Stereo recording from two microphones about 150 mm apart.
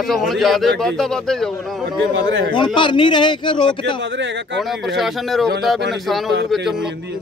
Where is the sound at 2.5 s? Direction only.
30° left (ahead or behind).